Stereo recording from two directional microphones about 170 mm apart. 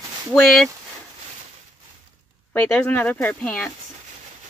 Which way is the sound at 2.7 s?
10° left (ahead or behind).